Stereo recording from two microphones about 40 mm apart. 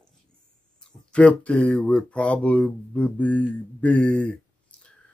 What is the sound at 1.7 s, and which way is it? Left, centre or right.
Speech, left.